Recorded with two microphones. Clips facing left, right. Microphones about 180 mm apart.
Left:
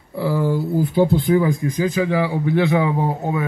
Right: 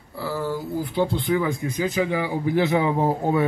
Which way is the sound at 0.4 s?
50° left (ahead or behind).